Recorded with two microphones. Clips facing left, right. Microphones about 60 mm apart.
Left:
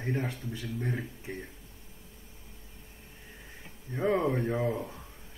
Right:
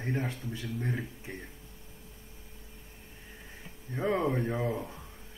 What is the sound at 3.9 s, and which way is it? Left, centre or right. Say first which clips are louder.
Speech: left 2 dB; centre.